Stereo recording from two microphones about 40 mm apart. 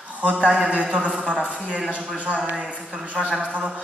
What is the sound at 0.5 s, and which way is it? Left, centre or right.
A woman's voice, right.